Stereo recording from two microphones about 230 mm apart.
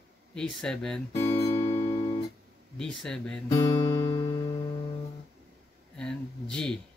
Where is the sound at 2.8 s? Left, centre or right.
Centre.